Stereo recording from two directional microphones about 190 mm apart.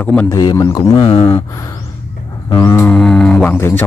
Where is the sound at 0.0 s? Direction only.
10° left (ahead or behind).